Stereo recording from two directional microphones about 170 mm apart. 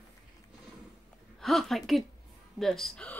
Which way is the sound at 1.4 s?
Centre (ahead or behind).